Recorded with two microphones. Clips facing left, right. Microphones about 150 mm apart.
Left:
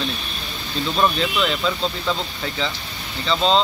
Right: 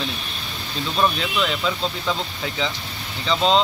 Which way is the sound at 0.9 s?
Centre (ahead or behind).